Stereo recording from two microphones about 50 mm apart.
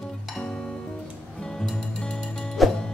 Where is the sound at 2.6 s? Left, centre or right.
Centre.